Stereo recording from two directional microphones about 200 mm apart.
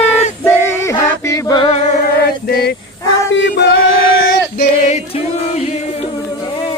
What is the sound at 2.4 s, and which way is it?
Male singing, 50° left (ahead or behind).